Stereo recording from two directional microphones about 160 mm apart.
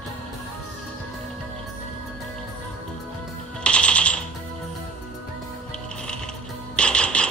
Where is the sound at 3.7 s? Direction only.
5° left (ahead or behind).